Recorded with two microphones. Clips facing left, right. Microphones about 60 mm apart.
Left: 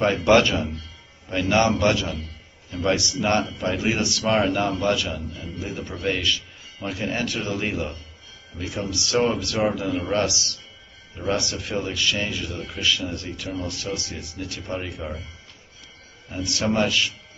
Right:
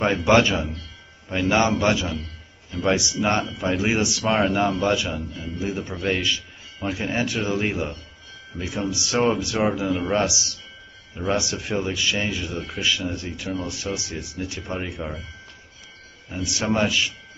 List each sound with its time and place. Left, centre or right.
0.0 s speech: centre
16.3 s speech: centre